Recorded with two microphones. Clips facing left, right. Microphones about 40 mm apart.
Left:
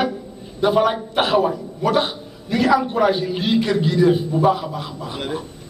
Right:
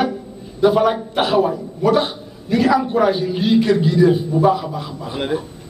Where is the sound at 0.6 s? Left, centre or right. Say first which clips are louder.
Right 2 dB; centre.